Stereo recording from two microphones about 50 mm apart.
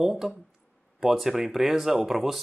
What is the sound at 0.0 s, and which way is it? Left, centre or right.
Speech, centre.